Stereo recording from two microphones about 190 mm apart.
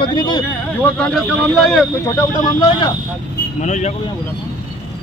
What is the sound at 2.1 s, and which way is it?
Speech, 25° left (ahead or behind).